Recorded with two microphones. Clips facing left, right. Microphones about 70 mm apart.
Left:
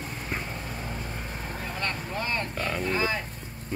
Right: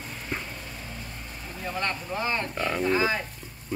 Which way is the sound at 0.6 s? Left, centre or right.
Left.